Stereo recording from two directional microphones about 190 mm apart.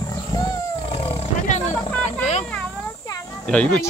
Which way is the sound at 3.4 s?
5° left (ahead or behind).